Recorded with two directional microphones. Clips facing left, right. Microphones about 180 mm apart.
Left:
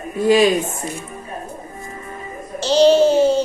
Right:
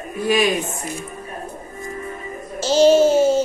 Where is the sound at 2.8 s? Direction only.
45° right (ahead or behind).